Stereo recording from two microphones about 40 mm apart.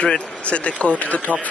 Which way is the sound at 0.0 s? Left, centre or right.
Left.